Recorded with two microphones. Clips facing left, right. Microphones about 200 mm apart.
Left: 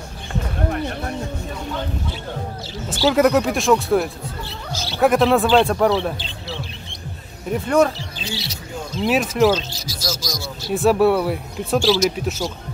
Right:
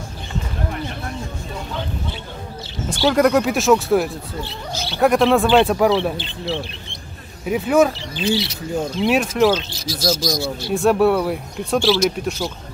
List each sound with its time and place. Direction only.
2.9 s speech: 5° left (ahead or behind)
6.1 s speech: 60° right (ahead or behind)
7.4 s speech: 5° right (ahead or behind)
8.2 s speech: 60° right (ahead or behind)
9.0 s speech: centre (ahead or behind)
9.6 s speech: 60° right (ahead or behind)
10.7 s speech: centre (ahead or behind)